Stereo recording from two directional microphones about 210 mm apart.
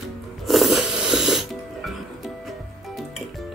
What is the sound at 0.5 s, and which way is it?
Music, centre (ahead or behind).